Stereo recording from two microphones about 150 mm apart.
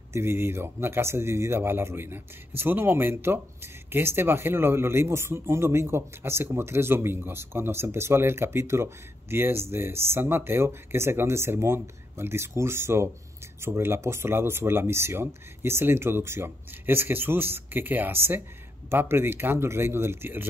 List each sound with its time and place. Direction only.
0.1 s speech: 15° right (ahead or behind)